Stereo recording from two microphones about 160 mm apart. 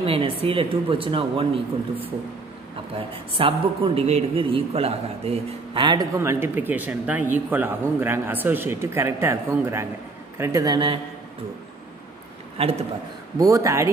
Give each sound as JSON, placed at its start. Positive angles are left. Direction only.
{"t": 0.0, "sound": "speech", "side_deg": -35}
{"t": 3.3, "sound": "a man's voice", "side_deg": -35}
{"t": 12.6, "sound": "speech", "side_deg": -40}
{"t": 13.4, "sound": "speech", "side_deg": -20}